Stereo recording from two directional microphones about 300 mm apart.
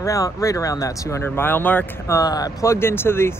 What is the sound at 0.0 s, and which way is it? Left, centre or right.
Speech, centre.